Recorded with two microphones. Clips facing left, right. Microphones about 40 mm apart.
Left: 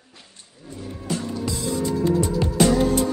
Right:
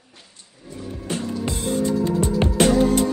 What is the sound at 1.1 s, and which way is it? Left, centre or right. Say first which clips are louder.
Music: right 1 dB; right.